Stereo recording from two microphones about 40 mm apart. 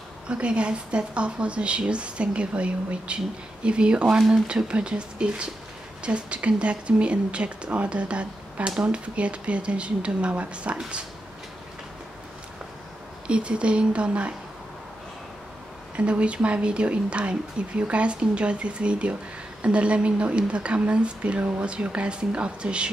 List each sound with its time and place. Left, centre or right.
0.3 s speech: right
13.3 s speech: right
16.0 s speech: right